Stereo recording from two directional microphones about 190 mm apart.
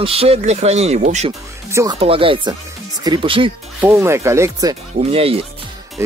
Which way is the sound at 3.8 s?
15° right (ahead or behind).